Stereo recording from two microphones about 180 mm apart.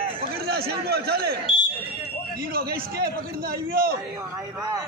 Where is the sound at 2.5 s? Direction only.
60° right (ahead or behind).